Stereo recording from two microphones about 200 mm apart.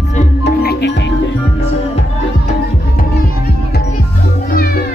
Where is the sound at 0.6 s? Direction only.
55° left (ahead or behind).